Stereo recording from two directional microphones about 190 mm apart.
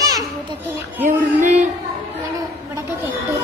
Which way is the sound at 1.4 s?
40° right (ahead or behind).